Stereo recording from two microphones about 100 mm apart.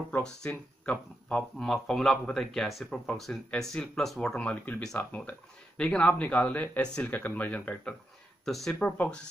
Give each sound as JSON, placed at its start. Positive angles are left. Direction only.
{"t": 0.2, "sound": "speech", "side_deg": 10}
{"t": 8.5, "sound": "speech", "side_deg": 0}
{"t": 8.8, "sound": "speech", "side_deg": 15}